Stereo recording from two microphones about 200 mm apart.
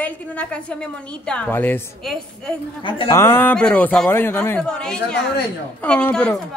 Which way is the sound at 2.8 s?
25° left (ahead or behind).